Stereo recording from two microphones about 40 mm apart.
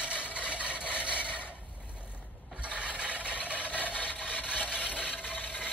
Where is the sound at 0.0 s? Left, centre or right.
Right.